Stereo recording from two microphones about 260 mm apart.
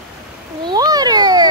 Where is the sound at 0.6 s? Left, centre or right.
Centre.